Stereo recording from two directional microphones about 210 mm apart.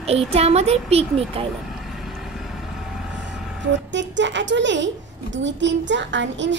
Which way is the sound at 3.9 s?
60° right (ahead or behind).